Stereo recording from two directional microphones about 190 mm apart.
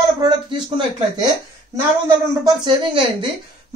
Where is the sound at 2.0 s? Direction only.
20° right (ahead or behind).